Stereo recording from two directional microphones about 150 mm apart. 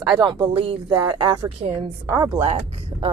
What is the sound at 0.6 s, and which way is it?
Speech, 35° right (ahead or behind).